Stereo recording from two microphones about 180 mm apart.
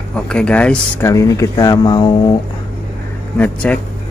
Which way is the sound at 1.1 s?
20° left (ahead or behind).